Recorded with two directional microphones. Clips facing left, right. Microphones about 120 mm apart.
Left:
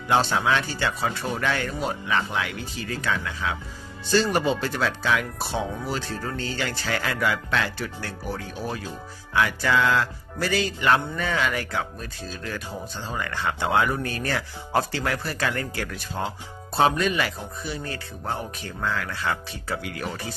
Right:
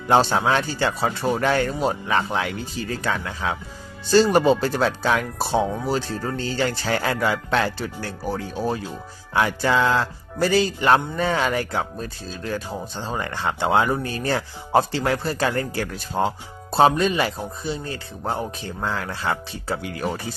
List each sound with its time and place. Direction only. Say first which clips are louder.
0.1 s speech: right 4 dB; 35° right (ahead or behind)